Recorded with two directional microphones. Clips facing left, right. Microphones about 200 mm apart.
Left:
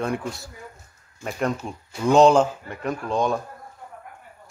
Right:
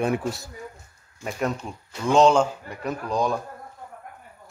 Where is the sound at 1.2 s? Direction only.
Centre (ahead or behind).